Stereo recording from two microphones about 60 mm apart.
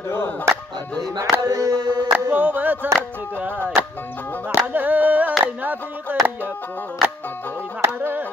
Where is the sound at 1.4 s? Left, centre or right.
Right.